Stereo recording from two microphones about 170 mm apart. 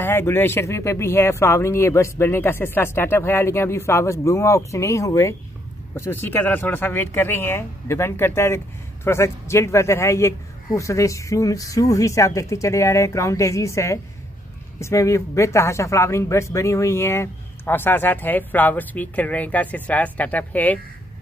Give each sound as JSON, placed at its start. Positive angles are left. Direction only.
{"t": 0.0, "sound": "speech", "side_deg": 15}